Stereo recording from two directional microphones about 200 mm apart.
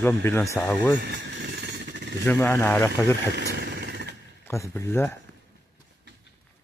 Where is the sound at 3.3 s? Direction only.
55° right (ahead or behind).